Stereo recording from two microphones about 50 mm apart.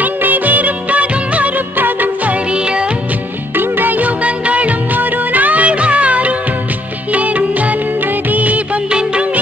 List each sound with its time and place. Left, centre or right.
0.0 s music of bollywood: right
2.5 s music of bollywood: centre
3.5 s music of bollywood: right